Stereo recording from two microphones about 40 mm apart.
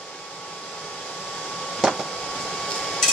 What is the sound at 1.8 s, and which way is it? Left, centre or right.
Vehicle, centre.